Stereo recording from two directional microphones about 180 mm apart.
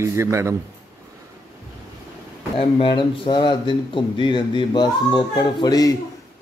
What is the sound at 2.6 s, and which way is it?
Speech, 30° left (ahead or behind).